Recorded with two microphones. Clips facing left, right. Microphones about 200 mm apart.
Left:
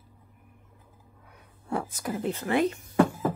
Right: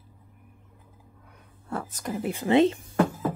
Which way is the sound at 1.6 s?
10° left (ahead or behind).